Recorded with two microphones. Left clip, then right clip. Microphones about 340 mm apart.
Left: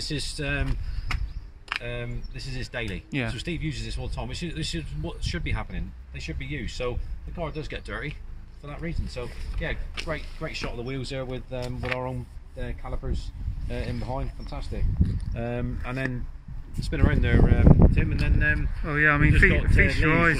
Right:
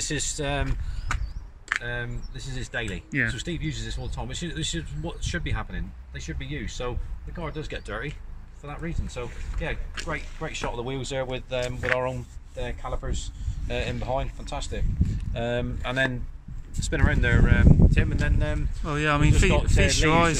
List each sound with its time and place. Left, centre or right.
0.0 s speech: right
1.7 s speech: centre; by 17.6 s right
17.6 s speech: left
18.9 s speech: centre
19.3 s speech: right
20.1 s speech: centre